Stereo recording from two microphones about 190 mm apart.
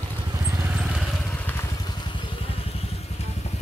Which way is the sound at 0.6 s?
5° right (ahead or behind).